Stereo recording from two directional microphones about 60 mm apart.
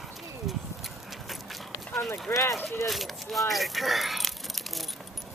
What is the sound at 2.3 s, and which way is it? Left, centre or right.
Speech, left.